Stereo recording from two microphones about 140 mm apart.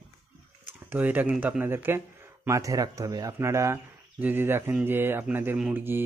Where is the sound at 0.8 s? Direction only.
15° right (ahead or behind).